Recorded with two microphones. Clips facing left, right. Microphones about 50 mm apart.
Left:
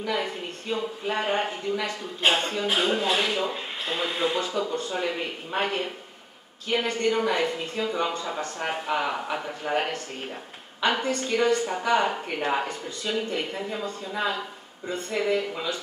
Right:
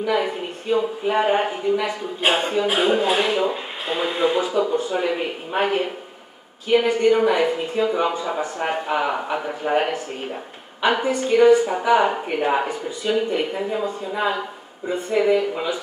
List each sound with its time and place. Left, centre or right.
0.1 s speech: centre